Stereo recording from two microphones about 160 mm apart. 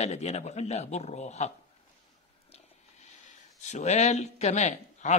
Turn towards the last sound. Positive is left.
turn(degrees=45)  # may be behind; listen again after turning